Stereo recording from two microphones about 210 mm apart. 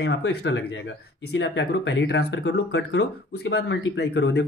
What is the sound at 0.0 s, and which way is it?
Speech, 55° left (ahead or behind).